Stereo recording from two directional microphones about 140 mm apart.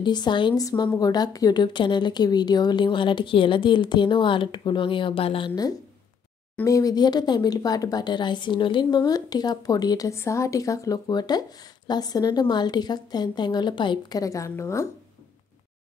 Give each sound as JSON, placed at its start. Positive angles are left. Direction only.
{"t": 0.0, "sound": "speech", "side_deg": 30}
{"t": 6.6, "sound": "speech", "side_deg": 25}